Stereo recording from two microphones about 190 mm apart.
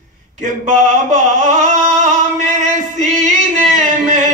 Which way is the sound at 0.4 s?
40° right (ahead or behind).